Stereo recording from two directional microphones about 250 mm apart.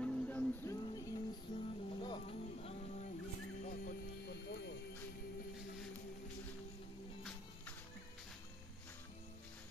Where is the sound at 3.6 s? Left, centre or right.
Left.